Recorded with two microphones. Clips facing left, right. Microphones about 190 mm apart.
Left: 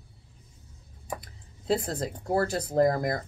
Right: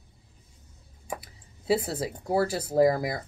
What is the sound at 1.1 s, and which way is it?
Speech, 5° right (ahead or behind).